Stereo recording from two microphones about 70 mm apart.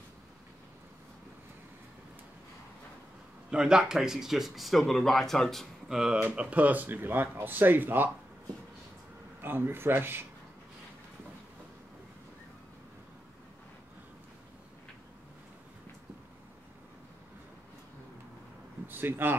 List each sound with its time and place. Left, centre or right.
3.4 s speech: centre
5.9 s speech: centre
6.2 s speech: right
9.4 s speech: right
18.9 s speech: right